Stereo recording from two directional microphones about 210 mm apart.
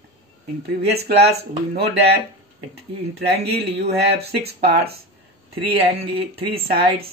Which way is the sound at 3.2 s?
50° right (ahead or behind).